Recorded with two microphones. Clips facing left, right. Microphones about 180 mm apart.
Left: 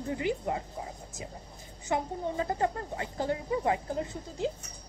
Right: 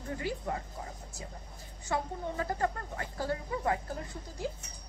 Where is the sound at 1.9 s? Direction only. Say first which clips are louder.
Left 3 dB; 20° left (ahead or behind).